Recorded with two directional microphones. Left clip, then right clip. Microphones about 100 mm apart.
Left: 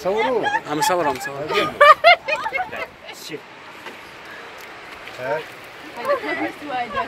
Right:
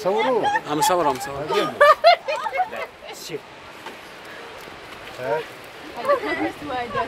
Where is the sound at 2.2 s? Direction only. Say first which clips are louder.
Left 1 dB; 45° left (ahead or behind).